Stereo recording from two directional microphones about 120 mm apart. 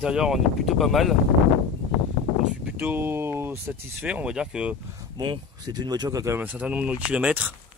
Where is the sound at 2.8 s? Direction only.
15° right (ahead or behind).